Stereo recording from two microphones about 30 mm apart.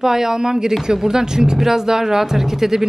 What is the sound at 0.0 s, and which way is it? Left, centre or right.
Speech, centre.